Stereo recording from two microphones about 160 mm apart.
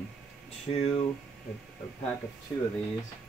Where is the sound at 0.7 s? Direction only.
35° left (ahead or behind).